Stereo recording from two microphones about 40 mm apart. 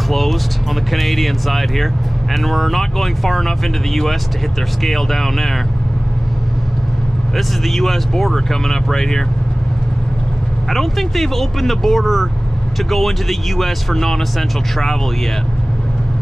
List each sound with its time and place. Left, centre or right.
0.1 s speech: centre
7.3 s speech: centre
10.7 s speech: centre